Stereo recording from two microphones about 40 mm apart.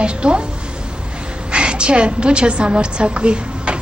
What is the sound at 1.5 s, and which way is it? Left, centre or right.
A woman's voice, right.